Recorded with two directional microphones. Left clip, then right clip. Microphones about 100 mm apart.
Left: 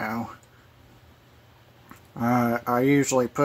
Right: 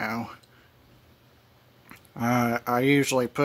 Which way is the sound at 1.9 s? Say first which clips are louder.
Left 2 dB; 15° right (ahead or behind).